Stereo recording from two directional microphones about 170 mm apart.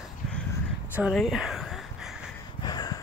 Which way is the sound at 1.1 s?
Centre (ahead or behind).